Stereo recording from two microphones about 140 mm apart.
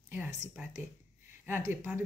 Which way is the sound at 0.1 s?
15° right (ahead or behind).